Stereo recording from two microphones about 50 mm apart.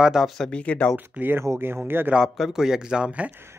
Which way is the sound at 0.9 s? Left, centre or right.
Right.